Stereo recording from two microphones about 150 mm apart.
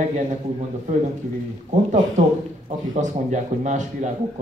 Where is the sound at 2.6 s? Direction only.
50° right (ahead or behind).